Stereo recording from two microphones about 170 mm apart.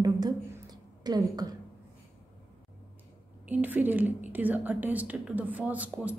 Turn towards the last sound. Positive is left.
turn(degrees=-10)  # may be behind; listen again after turning